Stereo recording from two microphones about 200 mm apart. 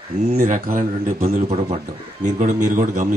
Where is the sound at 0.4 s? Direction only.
40° right (ahead or behind).